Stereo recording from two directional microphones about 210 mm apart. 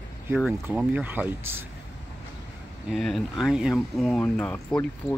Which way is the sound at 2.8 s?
Centre (ahead or behind).